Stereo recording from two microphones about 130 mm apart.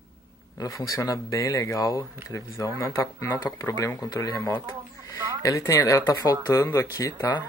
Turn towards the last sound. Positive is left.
turn(degrees=25)  # may be behind; listen again after turning